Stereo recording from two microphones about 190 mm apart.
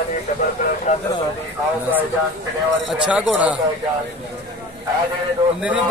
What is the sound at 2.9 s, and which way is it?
Speech, 5° right (ahead or behind).